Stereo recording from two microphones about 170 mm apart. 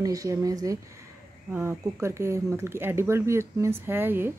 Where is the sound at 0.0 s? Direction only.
20° right (ahead or behind).